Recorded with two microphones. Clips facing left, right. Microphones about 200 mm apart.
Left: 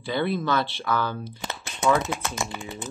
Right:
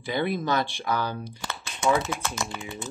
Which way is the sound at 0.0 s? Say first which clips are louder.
Left 1 dB; 15° right (ahead or behind).